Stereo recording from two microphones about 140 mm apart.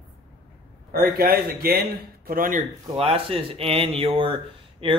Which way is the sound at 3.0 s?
40° right (ahead or behind).